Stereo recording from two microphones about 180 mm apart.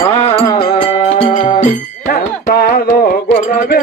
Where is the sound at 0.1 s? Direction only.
35° left (ahead or behind).